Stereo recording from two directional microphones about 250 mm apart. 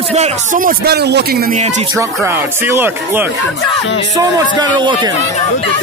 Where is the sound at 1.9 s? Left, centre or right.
Centre.